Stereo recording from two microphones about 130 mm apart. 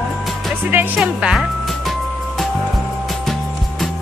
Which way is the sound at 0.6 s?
10° right (ahead or behind).